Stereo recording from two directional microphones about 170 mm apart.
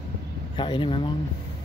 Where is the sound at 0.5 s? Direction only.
30° left (ahead or behind).